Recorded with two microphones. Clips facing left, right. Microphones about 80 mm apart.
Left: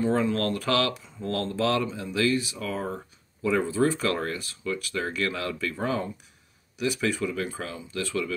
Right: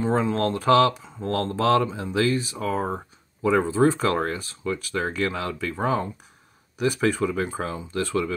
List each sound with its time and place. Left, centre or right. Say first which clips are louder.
0.0 s speech: right 2 dB; right
6.8 s speech: right 4 dB; right